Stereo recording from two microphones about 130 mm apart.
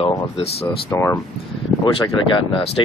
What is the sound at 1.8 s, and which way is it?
Speech, 35° left (ahead or behind).